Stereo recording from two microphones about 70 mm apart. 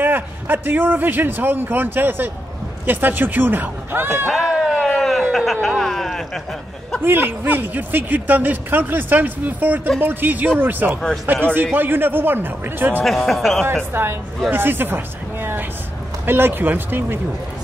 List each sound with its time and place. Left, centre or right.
0.0 s a man's voice: right
4.3 s a sound: centre
4.7 s speech: centre
7.0 s a man's voice: right
13.0 s speech: centre
13.9 s speech: right
16.3 s speech: right